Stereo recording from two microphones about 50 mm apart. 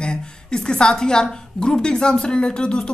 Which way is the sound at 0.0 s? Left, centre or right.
Centre.